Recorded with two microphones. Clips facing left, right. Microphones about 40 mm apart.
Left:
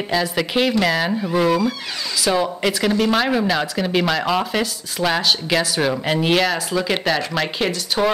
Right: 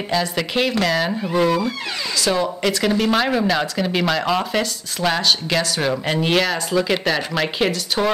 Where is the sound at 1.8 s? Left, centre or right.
Centre.